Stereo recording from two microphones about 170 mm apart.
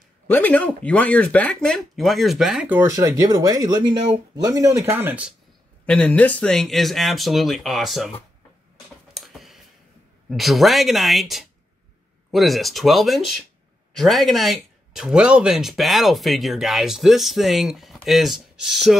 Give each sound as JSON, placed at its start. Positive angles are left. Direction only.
{"t": 0.3, "sound": "speech", "side_deg": 10}
{"t": 5.9, "sound": "speech", "side_deg": 5}
{"t": 9.1, "sound": "tick", "side_deg": 0}
{"t": 10.3, "sound": "speech", "side_deg": 0}